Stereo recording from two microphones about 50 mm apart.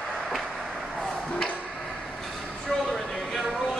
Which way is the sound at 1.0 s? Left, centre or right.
Centre.